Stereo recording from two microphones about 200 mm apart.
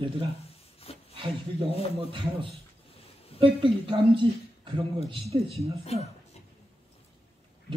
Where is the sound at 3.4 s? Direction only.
25° right (ahead or behind).